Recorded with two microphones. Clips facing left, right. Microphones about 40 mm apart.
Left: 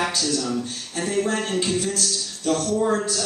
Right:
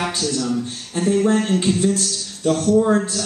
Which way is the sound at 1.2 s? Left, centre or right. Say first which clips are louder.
Right 3 dB; right.